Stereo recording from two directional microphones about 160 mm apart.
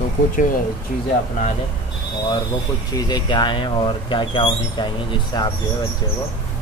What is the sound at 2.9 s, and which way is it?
A man's voice, 25° left (ahead or behind).